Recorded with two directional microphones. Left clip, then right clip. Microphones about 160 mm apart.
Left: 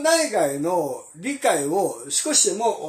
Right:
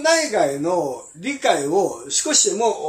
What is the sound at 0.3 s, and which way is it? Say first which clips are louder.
Speech: right 2 dB; 25° left (ahead or behind).